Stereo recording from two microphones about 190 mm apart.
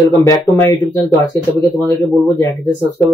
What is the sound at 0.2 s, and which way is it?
Speech, 15° left (ahead or behind).